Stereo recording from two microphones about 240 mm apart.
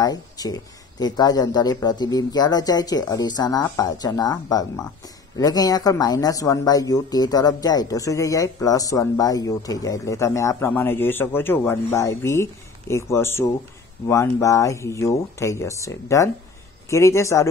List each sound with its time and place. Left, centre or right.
0.0 s speech: centre